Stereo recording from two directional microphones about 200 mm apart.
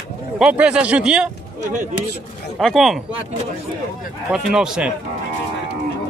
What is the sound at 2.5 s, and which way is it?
Speech, centre (ahead or behind).